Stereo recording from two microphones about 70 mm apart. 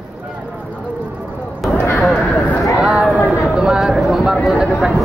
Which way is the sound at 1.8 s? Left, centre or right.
Left.